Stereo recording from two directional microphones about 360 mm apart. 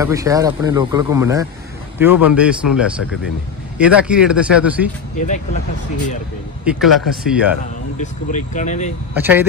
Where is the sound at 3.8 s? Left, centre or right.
Centre.